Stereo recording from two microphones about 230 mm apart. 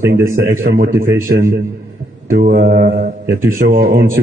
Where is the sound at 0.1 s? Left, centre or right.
Right.